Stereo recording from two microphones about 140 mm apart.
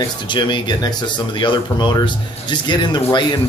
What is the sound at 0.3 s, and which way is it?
Speech, 35° left (ahead or behind).